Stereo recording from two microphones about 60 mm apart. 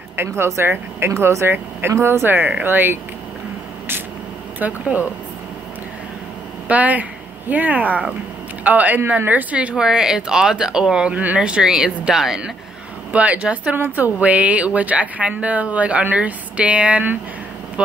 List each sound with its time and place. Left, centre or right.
0.1 s speech: right
4.6 s a woman's voice: right
6.7 s a woman's voice: right
9.8 s speech: centre
13.1 s a woman's voice: right